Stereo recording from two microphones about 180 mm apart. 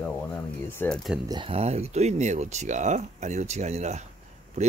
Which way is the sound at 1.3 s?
30° right (ahead or behind).